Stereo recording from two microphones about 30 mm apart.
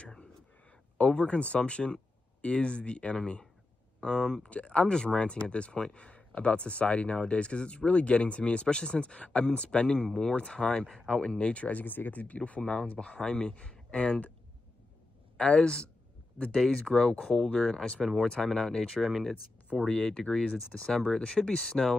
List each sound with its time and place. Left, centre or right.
0.9 s speech: left
4.0 s speech: left
4.5 s speech: left
11.3 s speech: left
11.6 s speech: left
12.4 s speech: left
15.3 s speech: left
18.9 s speech: centre
19.9 s speech: left; by 21.9 s centre